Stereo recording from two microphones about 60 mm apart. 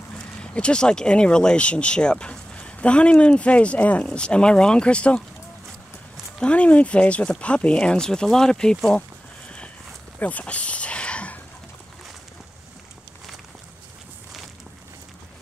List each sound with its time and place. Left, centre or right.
0.4 s speech: centre
6.4 s speech: left
10.1 s a sound: left